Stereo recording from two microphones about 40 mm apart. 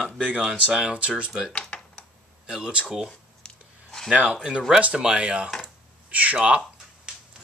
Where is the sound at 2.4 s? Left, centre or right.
Right.